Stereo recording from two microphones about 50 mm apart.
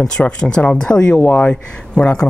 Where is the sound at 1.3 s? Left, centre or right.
Left.